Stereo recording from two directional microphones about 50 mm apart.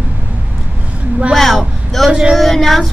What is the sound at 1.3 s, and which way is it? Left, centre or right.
Speech, centre.